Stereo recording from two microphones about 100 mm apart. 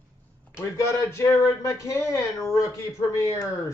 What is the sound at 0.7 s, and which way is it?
Speech, 30° left (ahead or behind).